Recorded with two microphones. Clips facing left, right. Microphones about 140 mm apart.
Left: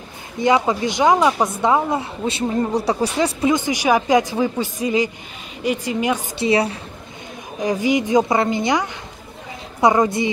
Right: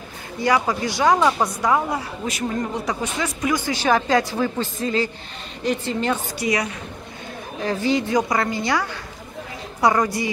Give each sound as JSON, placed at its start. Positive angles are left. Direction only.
{"t": 0.4, "sound": "a woman's voice", "side_deg": 20}
{"t": 6.3, "sound": "speech", "side_deg": 30}
{"t": 7.6, "sound": "speech", "side_deg": 15}